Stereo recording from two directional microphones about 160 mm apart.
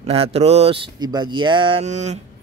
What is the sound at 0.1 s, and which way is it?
Speech, 40° right (ahead or behind).